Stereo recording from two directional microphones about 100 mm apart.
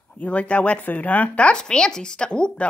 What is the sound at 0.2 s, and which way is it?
Speech, 15° left (ahead or behind).